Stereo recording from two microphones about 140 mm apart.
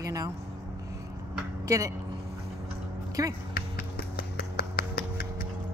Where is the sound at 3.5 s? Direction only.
90° left.